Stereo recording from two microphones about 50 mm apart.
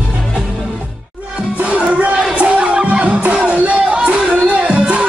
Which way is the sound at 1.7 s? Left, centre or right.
Right.